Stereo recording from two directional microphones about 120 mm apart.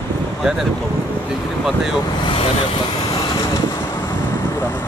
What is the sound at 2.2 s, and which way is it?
Vehicle, 55° left (ahead or behind).